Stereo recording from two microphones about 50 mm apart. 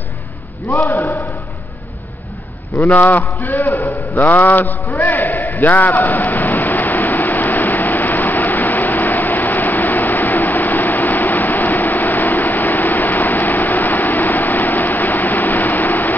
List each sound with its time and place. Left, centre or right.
0.7 s a man's voice: left
2.8 s speech: left
4.1 s a sound: left